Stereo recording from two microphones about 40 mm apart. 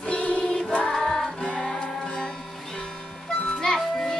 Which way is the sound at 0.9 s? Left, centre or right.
Centre.